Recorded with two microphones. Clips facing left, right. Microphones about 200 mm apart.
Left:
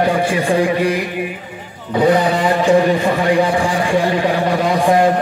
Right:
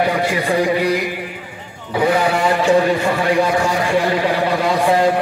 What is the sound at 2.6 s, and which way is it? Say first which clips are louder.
Speech: left 2 dB; 15° left (ahead or behind).